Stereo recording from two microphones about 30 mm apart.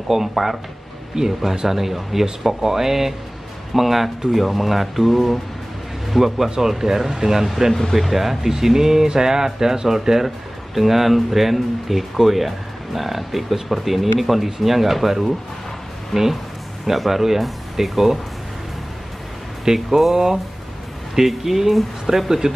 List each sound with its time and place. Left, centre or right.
0.1 s speech: centre
1.1 s speech: centre
1.8 s speech: centre
7.3 s speech: centre
16.1 s speech: centre
16.8 s speech: centre
19.6 s speech: right
21.1 s speech: centre